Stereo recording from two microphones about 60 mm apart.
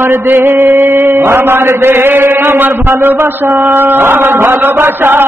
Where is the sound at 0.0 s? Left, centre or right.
Right.